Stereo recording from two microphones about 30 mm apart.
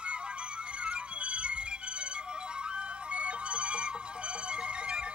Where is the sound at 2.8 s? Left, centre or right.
Right.